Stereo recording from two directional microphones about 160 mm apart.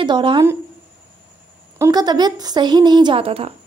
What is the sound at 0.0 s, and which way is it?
Speech, 30° right (ahead or behind).